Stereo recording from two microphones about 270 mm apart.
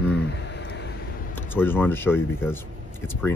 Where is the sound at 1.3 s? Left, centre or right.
Centre.